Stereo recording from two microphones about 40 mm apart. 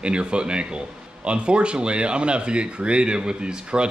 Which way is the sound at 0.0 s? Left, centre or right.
Right.